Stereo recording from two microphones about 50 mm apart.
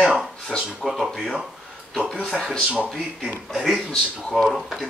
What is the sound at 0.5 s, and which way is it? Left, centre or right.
Speech, centre.